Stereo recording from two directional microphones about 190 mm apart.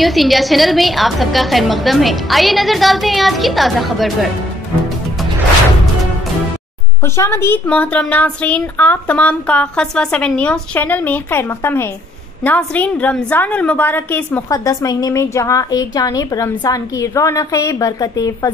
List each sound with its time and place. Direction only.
0.0 s a woman's voice: centre (ahead or behind)
7.2 s a woman's voice: 15° left (ahead or behind)